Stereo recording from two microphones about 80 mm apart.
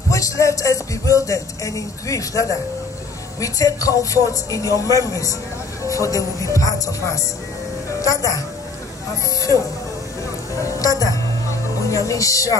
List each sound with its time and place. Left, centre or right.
0.1 s music: left
3.3 s a woman's voice: left
10.8 s a woman's voice: left